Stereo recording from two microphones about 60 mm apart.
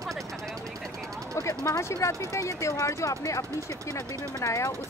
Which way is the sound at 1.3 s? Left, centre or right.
Left.